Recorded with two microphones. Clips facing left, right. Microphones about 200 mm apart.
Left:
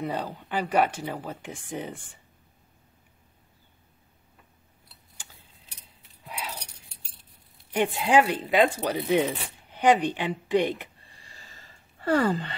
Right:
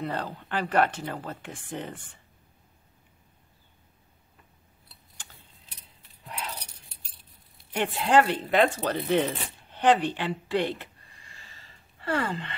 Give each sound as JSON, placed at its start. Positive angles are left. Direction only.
{"t": 0.0, "sound": "speech", "side_deg": 15}
{"t": 7.7, "sound": "speech", "side_deg": 10}
{"t": 11.2, "sound": "gasp", "side_deg": 40}